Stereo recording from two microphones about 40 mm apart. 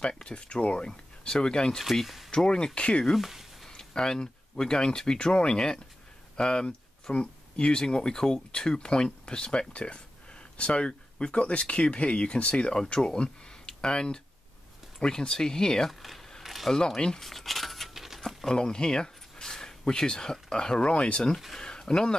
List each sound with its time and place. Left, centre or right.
0.2 s speech: left
1.8 s speech: centre
2.3 s speech: centre
3.6 s speech: centre
15.9 s speech: centre
16.4 s camera: centre
16.7 s speech: centre
17.2 s a sound: centre
18.5 s a sound: centre
19.9 s speech: centre
21.5 s a sound: centre